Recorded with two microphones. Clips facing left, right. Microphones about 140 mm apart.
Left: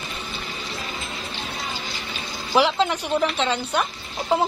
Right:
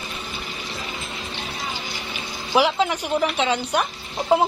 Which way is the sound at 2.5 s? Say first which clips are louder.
Even; 5° right (ahead or behind).